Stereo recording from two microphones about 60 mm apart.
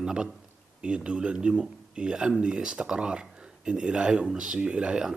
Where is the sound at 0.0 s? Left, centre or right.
Centre.